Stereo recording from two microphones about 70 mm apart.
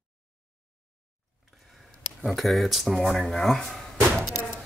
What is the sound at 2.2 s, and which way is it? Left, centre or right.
Speech, centre.